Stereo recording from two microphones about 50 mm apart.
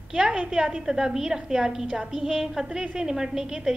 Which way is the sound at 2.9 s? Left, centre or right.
Centre.